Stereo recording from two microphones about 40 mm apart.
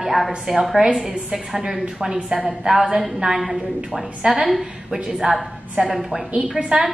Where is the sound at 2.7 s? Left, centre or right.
Right.